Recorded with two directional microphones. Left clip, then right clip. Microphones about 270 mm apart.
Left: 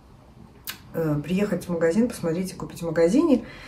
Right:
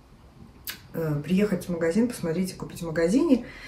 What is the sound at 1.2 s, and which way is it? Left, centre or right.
Speech, centre.